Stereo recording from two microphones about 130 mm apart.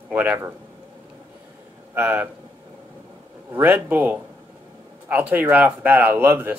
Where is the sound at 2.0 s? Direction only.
15° right (ahead or behind).